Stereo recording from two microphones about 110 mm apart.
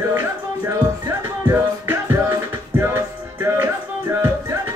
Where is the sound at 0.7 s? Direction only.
25° right (ahead or behind).